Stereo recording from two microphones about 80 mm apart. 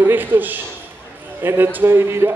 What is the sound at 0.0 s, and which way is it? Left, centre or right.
A man's voice, right.